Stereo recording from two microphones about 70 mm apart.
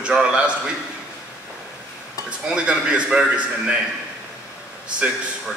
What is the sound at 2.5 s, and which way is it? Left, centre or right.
A man's voice, centre.